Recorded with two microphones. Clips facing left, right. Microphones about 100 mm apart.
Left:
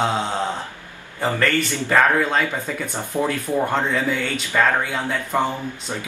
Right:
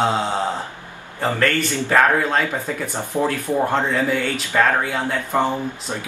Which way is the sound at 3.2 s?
Centre (ahead or behind).